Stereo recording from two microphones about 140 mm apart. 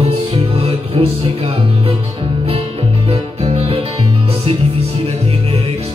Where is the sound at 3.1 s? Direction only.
45° right (ahead or behind).